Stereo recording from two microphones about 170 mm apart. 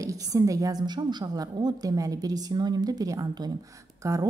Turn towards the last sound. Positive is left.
turn(degrees=-20)  # may be behind; listen again after turning